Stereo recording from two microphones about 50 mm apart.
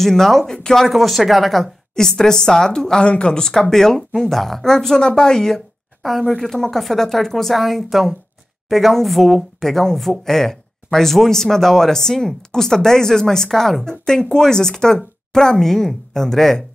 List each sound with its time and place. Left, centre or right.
0.0 s speech: centre
2.0 s speech: centre